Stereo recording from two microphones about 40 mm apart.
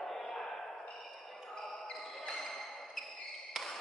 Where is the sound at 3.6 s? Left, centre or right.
Centre.